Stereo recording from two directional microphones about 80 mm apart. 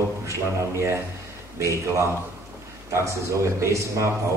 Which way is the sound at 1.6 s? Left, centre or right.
Right.